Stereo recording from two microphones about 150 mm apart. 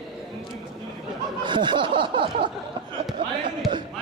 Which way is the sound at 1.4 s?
30° right (ahead or behind).